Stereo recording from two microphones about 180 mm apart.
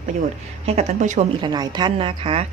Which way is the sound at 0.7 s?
40° right (ahead or behind).